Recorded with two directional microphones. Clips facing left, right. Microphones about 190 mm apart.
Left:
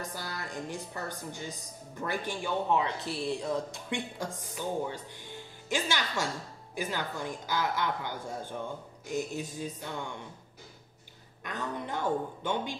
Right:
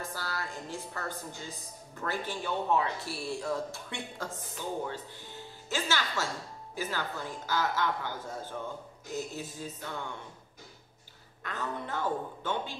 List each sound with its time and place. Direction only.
0.1 s speech: 20° left (ahead or behind)
11.4 s speech: 15° left (ahead or behind)